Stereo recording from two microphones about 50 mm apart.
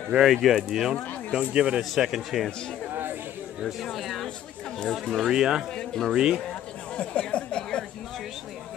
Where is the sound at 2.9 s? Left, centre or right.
Right.